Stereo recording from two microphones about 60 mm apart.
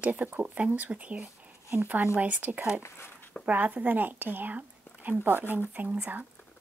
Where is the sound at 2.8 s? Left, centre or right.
Left.